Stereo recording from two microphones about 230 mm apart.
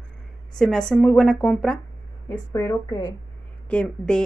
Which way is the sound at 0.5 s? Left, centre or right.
Centre.